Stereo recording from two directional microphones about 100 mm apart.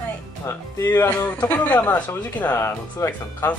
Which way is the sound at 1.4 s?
15° left (ahead or behind).